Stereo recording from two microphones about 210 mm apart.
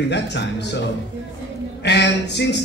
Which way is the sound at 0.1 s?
55° left (ahead or behind).